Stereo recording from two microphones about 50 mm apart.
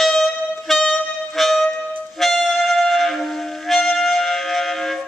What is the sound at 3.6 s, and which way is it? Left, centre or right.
Music, centre.